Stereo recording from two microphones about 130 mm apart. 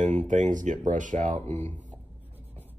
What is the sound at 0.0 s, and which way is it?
Speech, 65° right (ahead or behind).